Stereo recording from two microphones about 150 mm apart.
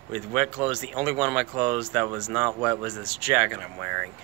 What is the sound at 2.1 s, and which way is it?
Speech, 15° right (ahead or behind).